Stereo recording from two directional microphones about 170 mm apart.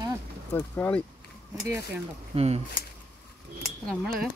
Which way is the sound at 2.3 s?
40° right (ahead or behind).